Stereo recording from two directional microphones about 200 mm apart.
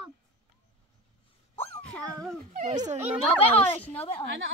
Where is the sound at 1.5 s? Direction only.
10° left (ahead or behind).